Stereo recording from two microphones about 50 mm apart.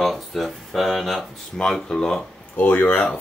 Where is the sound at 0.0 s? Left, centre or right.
Centre.